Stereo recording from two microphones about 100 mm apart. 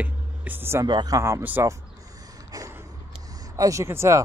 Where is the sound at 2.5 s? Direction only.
35° right (ahead or behind).